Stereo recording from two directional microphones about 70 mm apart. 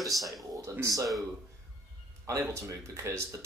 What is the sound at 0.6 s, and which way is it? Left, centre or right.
Speech, right.